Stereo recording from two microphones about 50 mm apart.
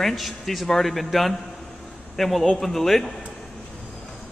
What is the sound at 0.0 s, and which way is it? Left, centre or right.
A man's voice, centre.